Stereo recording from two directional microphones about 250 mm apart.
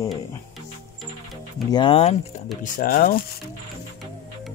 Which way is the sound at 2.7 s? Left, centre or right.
Left.